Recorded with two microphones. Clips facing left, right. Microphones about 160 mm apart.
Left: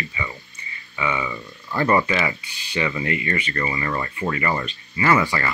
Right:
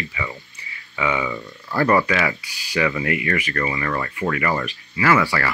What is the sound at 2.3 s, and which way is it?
Speech, 75° right (ahead or behind).